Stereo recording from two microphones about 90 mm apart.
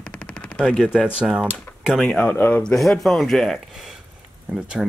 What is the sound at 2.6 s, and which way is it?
Speech, 5° left (ahead or behind).